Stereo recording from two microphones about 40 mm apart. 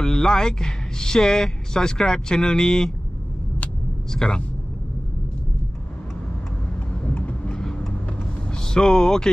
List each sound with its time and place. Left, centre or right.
0.0 s speech: centre
4.1 s speech: centre
6.9 s vehicle: left
7.5 s vehicle: centre
8.6 s speech: centre